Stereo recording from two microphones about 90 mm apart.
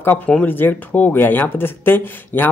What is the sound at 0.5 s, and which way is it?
Speech, 20° left (ahead or behind).